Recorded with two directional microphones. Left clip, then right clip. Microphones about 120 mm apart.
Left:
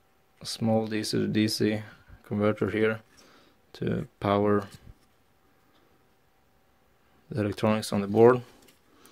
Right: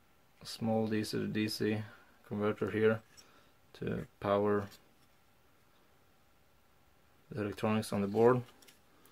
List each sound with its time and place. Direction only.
0.6 s speech: 40° left (ahead or behind)
7.3 s speech: 45° left (ahead or behind)